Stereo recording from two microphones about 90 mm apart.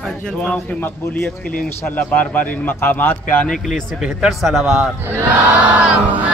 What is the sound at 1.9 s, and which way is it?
A man's voice, 20° left (ahead or behind).